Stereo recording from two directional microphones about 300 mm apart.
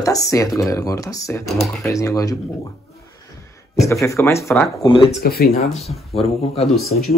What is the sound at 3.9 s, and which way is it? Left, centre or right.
Speech, centre.